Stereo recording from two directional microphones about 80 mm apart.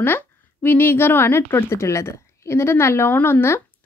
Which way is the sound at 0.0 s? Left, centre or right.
Left.